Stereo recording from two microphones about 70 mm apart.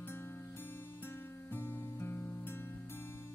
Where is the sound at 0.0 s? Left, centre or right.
Left.